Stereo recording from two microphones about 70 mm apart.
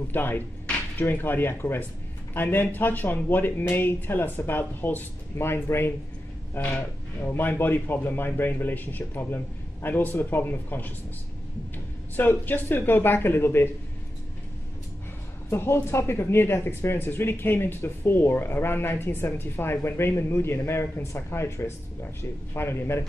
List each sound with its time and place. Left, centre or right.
0.1 s a man's voice: left
12.2 s speech: left
15.5 s speech: left